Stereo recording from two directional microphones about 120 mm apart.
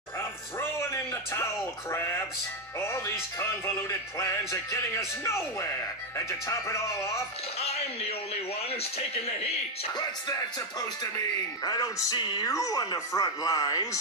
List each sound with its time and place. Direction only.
0.6 s speech: 20° left (ahead or behind)
7.5 s speech: 60° left (ahead or behind)
11.6 s speech: 30° left (ahead or behind)